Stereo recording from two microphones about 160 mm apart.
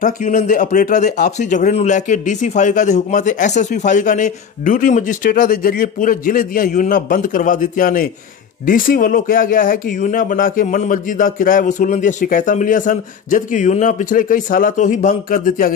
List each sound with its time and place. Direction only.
0.0 s a man's voice: 50° left (ahead or behind)